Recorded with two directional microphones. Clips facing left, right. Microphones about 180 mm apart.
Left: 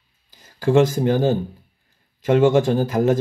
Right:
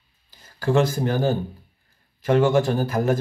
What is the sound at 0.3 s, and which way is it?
Speech, 20° left (ahead or behind).